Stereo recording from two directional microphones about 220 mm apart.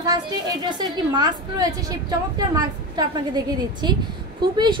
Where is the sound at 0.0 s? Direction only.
15° right (ahead or behind).